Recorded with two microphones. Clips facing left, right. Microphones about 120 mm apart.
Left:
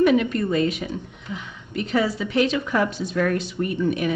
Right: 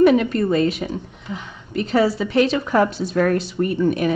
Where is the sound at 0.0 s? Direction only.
35° right (ahead or behind).